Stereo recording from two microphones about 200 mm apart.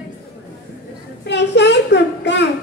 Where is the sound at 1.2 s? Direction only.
60° left (ahead or behind).